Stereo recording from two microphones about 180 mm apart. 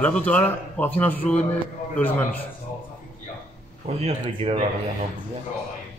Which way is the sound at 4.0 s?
35° right (ahead or behind).